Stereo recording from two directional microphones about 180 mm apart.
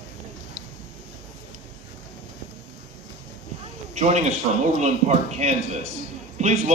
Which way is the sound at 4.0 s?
40° right (ahead or behind).